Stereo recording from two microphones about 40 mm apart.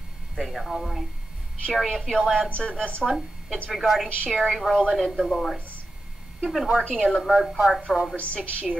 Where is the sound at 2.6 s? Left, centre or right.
Left.